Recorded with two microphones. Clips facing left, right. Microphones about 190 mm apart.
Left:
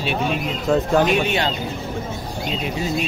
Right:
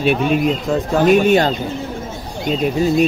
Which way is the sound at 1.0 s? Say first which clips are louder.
Right 7 dB; 45° right (ahead or behind).